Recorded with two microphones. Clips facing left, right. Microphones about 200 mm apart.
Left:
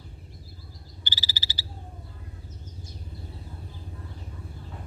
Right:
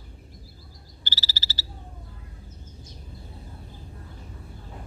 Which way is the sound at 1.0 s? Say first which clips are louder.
Right 1 dB; 15° left (ahead or behind).